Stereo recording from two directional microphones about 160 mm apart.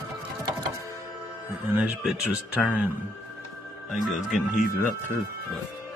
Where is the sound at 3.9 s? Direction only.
Centre (ahead or behind).